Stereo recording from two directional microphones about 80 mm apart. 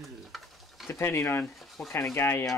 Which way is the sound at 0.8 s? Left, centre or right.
Left.